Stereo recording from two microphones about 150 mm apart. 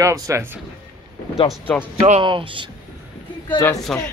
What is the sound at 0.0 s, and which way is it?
Speech, 20° right (ahead or behind).